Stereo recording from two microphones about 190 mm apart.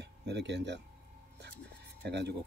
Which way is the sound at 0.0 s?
65° right (ahead or behind).